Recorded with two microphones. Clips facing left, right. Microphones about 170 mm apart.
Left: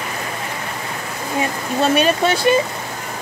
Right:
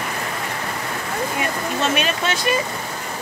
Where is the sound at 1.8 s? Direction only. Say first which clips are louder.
Left 7 dB; 35° left (ahead or behind).